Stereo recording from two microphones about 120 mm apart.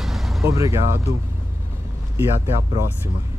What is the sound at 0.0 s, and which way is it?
Vehicle, centre (ahead or behind).